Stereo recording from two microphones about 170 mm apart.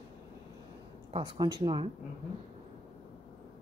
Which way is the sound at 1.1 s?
30° right (ahead or behind).